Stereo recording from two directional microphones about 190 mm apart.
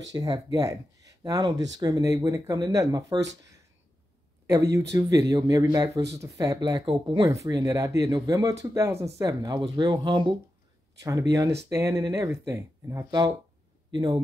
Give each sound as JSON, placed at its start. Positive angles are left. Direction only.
{"t": 0.1, "sound": "speech", "side_deg": -20}
{"t": 4.9, "sound": "speech", "side_deg": -15}